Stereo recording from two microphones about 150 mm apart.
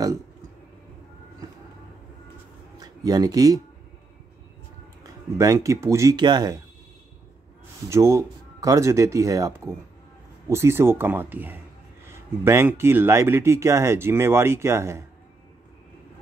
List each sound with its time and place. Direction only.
2.8 s speech: 25° right (ahead or behind)
5.4 s speech: 20° right (ahead or behind)
7.9 s speech: 20° right (ahead or behind)